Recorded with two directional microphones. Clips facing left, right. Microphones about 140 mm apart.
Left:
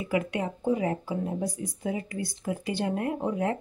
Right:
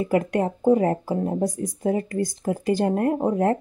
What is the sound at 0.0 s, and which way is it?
Speech, 45° right (ahead or behind).